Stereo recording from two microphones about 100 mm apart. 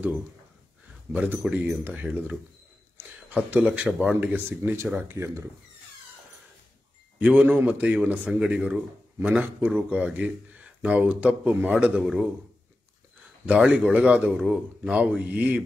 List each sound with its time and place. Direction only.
1.1 s speech: 15° right (ahead or behind)
7.2 s speech: 10° right (ahead or behind)
11.7 s speech: 5° right (ahead or behind)
13.5 s speech: 10° right (ahead or behind)